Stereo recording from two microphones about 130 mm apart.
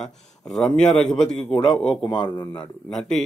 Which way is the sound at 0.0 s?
5° left (ahead or behind).